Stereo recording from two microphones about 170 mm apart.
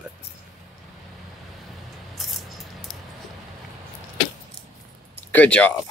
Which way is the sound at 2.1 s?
Centre (ahead or behind).